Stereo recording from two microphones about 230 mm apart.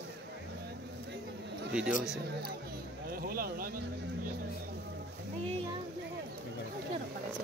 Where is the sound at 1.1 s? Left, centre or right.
Right.